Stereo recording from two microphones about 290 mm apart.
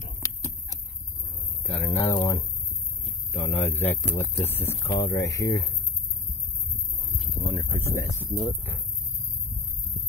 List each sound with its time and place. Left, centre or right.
1.6 s speech: centre
7.5 s speech: centre